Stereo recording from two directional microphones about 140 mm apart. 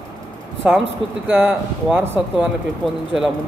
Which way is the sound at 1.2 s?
15° right (ahead or behind).